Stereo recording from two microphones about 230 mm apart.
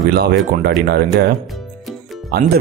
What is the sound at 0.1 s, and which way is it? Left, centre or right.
Speech, right.